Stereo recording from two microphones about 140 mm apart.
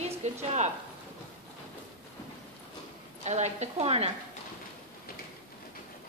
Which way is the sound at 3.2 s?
55° right (ahead or behind).